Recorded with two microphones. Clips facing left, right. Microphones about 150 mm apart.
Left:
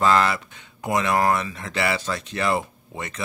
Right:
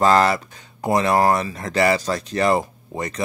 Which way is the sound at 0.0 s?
40° right (ahead or behind).